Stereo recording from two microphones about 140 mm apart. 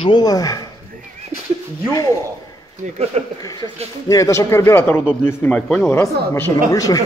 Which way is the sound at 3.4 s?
25° left (ahead or behind).